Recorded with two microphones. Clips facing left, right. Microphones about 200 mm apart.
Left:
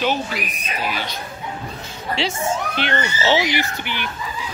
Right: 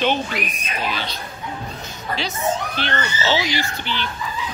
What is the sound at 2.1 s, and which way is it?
A woman's voice, 25° left (ahead or behind).